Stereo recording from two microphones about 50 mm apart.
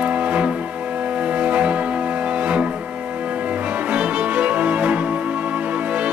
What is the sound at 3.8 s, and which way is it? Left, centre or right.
Music, right.